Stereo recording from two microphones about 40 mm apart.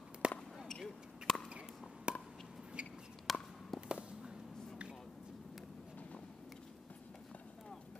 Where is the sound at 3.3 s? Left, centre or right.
Centre.